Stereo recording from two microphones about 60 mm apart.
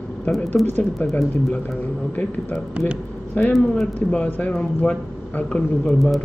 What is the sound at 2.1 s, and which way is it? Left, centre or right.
Speech, left.